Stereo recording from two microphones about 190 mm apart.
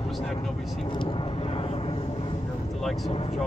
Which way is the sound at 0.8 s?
25° left (ahead or behind).